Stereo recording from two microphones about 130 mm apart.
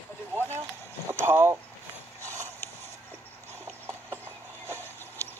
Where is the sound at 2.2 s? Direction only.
15° left (ahead or behind).